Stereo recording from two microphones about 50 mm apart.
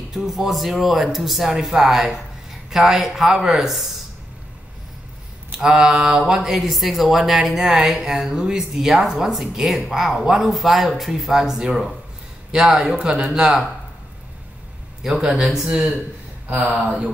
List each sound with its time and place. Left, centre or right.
0.1 s speech: centre
5.6 s speech: centre
11.7 s speech: centre
12.4 s speech: centre
15.3 s speech: centre
16.4 s speech: right